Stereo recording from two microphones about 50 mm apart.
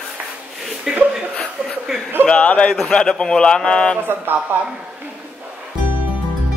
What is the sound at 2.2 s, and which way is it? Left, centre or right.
Speech, left.